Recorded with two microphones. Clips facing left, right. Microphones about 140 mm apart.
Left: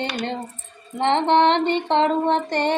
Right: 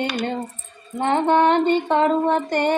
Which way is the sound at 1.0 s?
25° left (ahead or behind).